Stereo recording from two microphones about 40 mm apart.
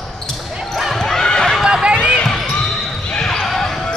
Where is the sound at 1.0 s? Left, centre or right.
Centre.